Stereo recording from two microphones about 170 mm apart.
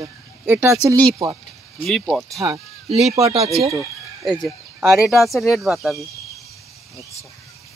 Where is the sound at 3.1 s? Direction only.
35° right (ahead or behind).